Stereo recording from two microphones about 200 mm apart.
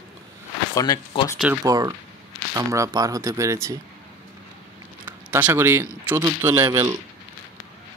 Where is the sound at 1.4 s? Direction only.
15° right (ahead or behind).